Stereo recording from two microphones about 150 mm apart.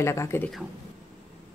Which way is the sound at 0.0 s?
20° left (ahead or behind).